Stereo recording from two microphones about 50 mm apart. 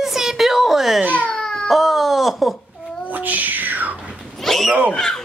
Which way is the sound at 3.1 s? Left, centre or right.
Right.